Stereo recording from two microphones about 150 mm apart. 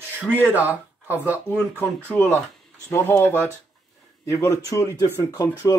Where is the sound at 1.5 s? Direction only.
10° left (ahead or behind).